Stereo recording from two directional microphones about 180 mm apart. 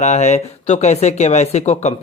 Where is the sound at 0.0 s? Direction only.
40° left (ahead or behind).